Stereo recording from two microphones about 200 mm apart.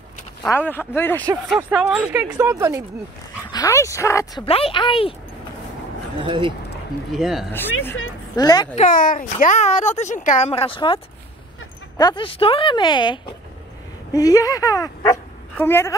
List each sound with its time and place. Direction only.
0.4 s speech: 10° left (ahead or behind)
1.5 s speech: 5° right (ahead or behind)
3.5 s speech: 15° left (ahead or behind)
4.5 s speech: 30° left (ahead or behind)
6.2 s speech: 25° right (ahead or behind)
7.2 s speech: centre (ahead or behind)
8.4 s speech: 20° left (ahead or behind)
8.7 s speech: 40° left (ahead or behind); by 11.0 s 25° left (ahead or behind)
12.0 s speech: 25° left (ahead or behind)